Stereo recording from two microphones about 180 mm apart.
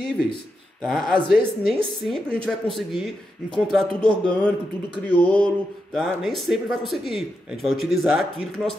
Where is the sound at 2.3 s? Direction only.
30° right (ahead or behind).